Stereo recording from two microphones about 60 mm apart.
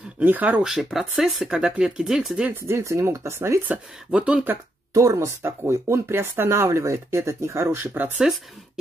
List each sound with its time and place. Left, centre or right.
0.2 s speech: right
0.6 s speech: centre
2.5 s speech: right
3.6 s speech: right
4.9 s speech: right
5.4 s speech: right